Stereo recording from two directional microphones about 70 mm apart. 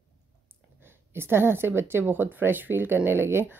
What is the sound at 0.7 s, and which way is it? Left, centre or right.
A woman's voice, right.